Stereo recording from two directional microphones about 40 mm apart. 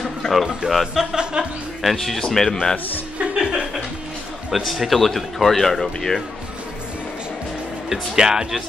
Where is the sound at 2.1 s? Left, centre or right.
Centre.